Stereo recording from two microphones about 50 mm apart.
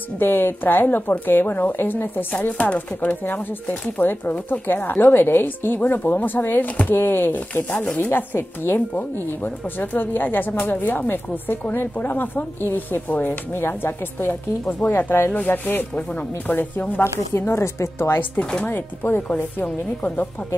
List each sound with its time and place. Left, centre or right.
0.2 s a woman's voice: left
7.7 s speech: left
8.0 s a woman's voice: left
13.6 s speech: left
15.3 s a woman's voice: left
17.0 s speech: left
19.2 s a woman's voice: left